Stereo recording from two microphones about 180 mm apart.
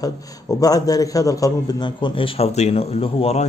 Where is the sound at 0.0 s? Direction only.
20° left (ahead or behind).